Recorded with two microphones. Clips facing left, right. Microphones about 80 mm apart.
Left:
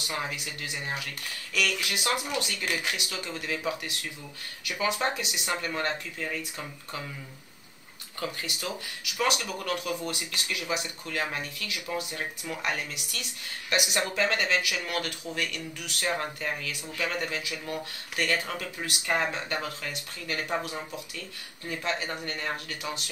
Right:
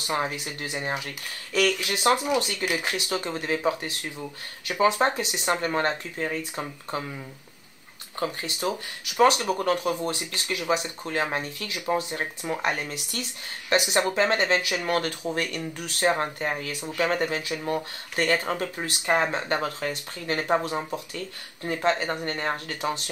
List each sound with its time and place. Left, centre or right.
0.0 s speech: right
8.2 s speech: right